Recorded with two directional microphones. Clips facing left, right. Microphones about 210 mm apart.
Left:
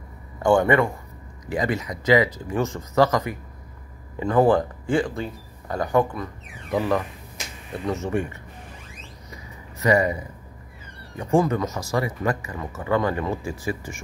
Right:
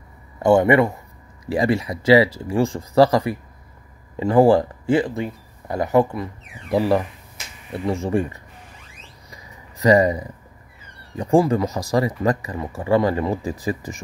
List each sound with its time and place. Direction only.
0.4 s speech: 25° right (ahead or behind)
9.8 s speech: 35° right (ahead or behind)